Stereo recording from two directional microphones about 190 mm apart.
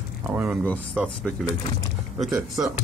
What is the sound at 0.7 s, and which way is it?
Speech, 5° left (ahead or behind).